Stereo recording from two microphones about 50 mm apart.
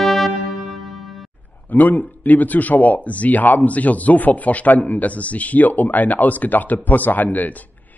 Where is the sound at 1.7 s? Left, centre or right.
Left.